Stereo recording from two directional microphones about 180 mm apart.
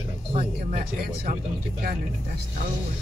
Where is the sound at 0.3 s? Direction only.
35° right (ahead or behind).